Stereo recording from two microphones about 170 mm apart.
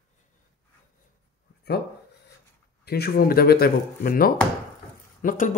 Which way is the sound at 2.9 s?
65° left (ahead or behind).